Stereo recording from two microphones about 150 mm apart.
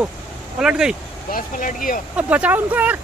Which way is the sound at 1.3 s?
65° left (ahead or behind).